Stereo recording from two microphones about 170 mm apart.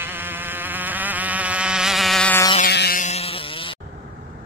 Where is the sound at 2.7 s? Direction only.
75° left (ahead or behind).